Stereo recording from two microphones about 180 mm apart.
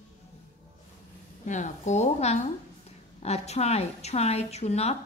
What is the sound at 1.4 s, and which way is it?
A woman's voice, 45° left (ahead or behind).